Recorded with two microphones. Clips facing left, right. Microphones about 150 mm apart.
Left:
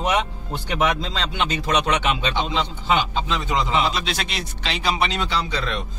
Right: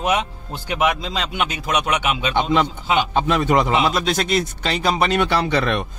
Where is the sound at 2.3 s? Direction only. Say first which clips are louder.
Right 6 dB; 55° right (ahead or behind).